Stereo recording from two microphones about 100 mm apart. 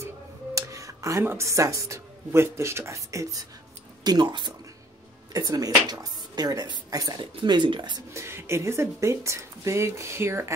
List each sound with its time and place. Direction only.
0.6 s speech: 30° right (ahead or behind)
4.0 s speech: 45° right (ahead or behind)
7.3 s speech: 50° right (ahead or behind)
8.1 s speech: 25° right (ahead or behind)